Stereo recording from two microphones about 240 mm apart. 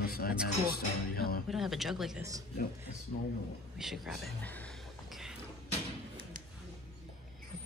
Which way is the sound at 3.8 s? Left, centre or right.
Centre.